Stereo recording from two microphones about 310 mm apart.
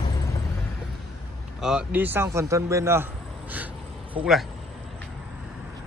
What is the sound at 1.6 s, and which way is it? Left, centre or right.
Speech, centre.